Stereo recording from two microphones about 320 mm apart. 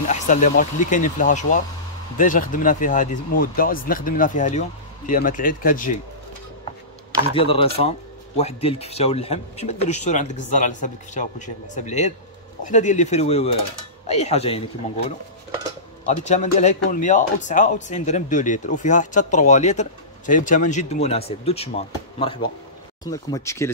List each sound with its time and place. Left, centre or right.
0.1 s speech: left
7.3 s speech: centre
16.1 s speech: left
23.0 s speech: centre